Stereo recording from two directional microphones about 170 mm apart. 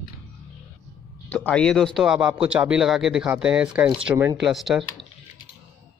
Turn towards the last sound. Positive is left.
turn(degrees=0)  # may be behind; listen again after turning